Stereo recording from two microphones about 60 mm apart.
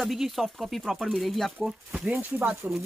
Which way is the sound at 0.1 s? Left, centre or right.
Centre.